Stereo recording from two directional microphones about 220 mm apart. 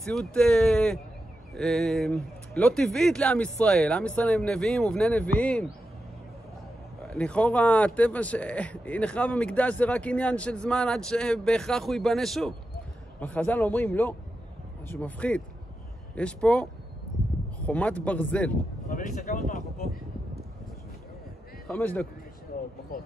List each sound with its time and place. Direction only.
0.0 s speech: centre (ahead or behind)
7.2 s a man's voice: 5° left (ahead or behind)
17.6 s a man's voice: 5° left (ahead or behind)
18.9 s speech: 35° left (ahead or behind)
21.6 s a man's voice: 10° left (ahead or behind)